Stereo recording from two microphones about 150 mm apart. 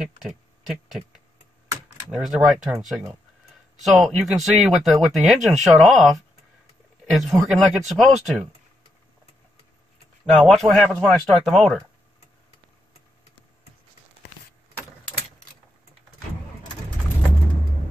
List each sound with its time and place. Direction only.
0.0 s speech: centre (ahead or behind)
10.3 s speech: centre (ahead or behind)